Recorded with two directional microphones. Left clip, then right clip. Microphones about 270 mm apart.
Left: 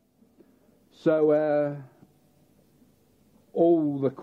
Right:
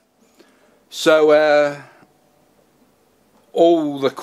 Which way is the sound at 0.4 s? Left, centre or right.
Centre.